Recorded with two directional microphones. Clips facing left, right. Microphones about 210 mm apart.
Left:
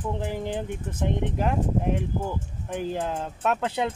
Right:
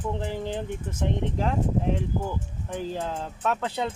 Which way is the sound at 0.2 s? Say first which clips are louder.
Left 1 dB; 15° left (ahead or behind).